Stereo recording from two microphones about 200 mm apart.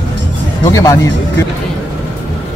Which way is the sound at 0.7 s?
15° left (ahead or behind).